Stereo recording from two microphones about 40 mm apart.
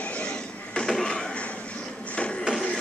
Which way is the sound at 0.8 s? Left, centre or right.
Centre.